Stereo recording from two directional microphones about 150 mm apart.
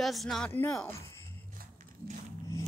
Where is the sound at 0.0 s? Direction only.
Centre (ahead or behind).